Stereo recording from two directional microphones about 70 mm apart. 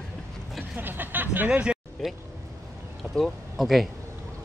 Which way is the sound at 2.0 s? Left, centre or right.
Centre.